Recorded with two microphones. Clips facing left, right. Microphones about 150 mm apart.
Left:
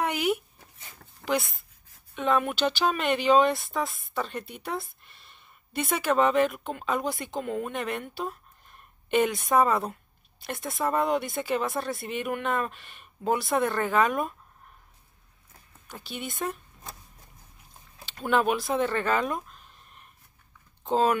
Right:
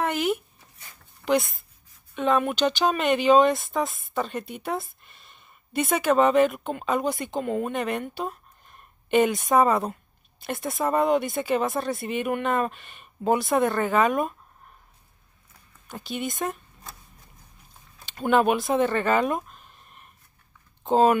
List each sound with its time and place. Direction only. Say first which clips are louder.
0.0 s speech: right 2 dB; 10° left (ahead or behind)
1.2 s speech: right 5 dB; 60° left (ahead or behind)
2.1 s a woman's voice: right 3 dB; centre (ahead or behind)
15.9 s a woman's voice: right 6 dB; centre (ahead or behind)
18.7 s a woman's voice: right 4 dB; centre (ahead or behind)
20.9 s a woman's voice: right 5 dB; 5° right (ahead or behind)